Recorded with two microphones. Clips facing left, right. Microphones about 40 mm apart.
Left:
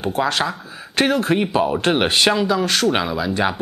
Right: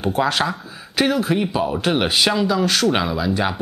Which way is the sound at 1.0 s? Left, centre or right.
Centre.